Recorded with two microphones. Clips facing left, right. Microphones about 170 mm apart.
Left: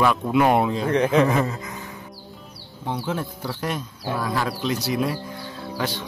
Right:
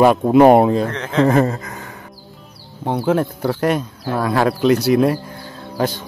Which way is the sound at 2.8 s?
60° right (ahead or behind).